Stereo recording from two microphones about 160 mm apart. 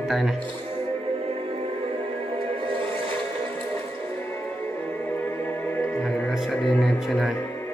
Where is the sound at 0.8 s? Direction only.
40° right (ahead or behind).